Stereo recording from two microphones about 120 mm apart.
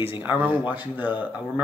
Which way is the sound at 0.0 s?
20° right (ahead or behind).